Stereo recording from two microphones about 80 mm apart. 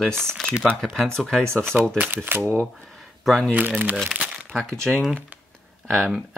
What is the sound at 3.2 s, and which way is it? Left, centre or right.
Speech, centre.